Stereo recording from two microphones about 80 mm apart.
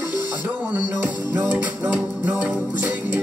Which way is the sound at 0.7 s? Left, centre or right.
Right.